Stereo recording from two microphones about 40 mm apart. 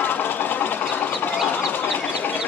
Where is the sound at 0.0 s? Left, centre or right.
Left.